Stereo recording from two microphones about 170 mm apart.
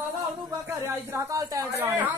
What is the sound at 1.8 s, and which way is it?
Music, 10° right (ahead or behind).